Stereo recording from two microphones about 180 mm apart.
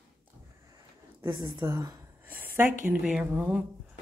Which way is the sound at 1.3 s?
25° right (ahead or behind).